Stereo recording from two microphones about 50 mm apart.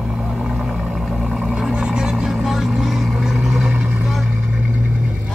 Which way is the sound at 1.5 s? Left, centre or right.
Centre.